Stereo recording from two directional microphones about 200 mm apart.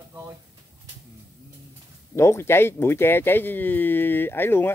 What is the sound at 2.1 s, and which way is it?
Speech, 15° left (ahead or behind).